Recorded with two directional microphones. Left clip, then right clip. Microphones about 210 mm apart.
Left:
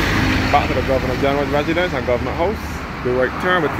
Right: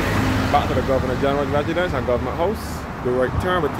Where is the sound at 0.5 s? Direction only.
5° right (ahead or behind).